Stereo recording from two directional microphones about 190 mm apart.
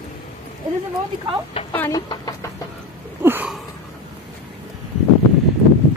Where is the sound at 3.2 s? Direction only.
10° right (ahead or behind).